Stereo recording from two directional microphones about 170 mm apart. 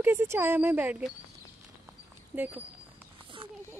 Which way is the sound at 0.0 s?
15° right (ahead or behind).